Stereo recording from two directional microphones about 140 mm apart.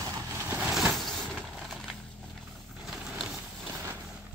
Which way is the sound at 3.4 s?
15° right (ahead or behind).